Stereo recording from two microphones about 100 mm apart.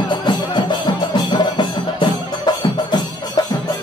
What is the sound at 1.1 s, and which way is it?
Music, 45° left (ahead or behind).